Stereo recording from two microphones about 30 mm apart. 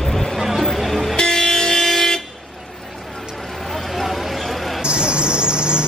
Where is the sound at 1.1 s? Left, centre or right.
Left.